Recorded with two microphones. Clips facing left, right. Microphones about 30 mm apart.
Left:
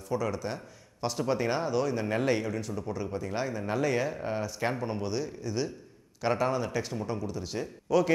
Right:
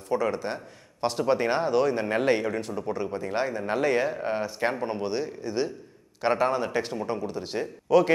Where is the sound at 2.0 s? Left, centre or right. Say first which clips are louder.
Right 4 dB; right.